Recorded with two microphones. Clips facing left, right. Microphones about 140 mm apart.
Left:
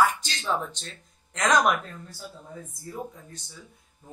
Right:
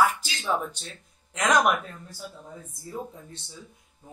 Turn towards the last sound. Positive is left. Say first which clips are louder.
# even
turn(degrees=-25)  # may be behind; listen again after turning